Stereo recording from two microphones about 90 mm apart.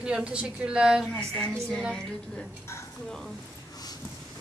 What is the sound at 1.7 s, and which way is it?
Speech, centre (ahead or behind).